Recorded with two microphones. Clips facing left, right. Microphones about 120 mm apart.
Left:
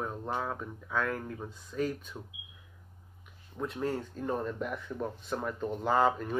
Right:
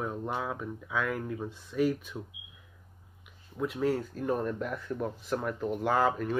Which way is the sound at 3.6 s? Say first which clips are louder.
Right 4 dB; centre (ahead or behind).